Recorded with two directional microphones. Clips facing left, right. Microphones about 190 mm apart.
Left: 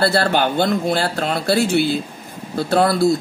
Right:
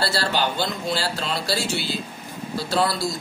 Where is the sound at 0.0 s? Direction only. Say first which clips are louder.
Left 7 dB; 55° left (ahead or behind).